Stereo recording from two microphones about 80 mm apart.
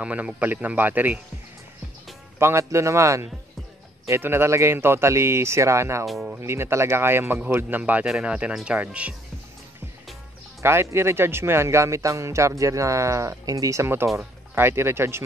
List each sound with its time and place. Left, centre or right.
0.0 s speech: centre
2.3 s speech: right; by 9.1 s centre
10.6 s speech: right